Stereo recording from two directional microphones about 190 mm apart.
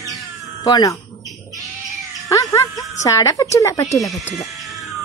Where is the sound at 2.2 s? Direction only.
20° left (ahead or behind).